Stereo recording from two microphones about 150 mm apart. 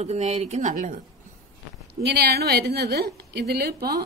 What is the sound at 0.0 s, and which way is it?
Speech, 50° right (ahead or behind).